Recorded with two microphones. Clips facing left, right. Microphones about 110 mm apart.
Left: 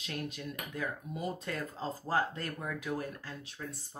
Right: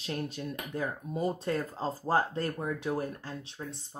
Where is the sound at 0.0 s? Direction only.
30° right (ahead or behind).